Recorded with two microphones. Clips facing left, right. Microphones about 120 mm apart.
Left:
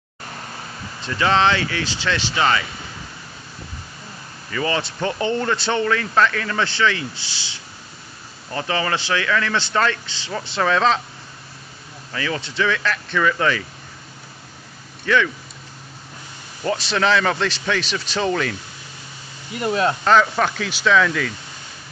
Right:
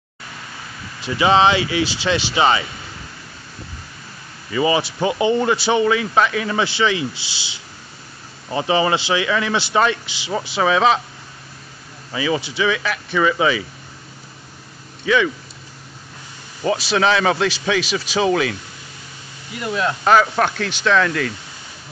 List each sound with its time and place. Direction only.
1.0 s speech: 10° right (ahead or behind)
4.5 s speech: 15° right (ahead or behind)
12.1 s speech: 15° right (ahead or behind)
15.0 s speech: 10° right (ahead or behind)
16.6 s a man's voice: 5° right (ahead or behind)
19.6 s speech: 35° left (ahead or behind)
20.1 s a man's voice: 5° right (ahead or behind)